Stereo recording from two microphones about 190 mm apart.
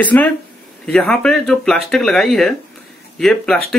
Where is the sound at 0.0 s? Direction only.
10° left (ahead or behind).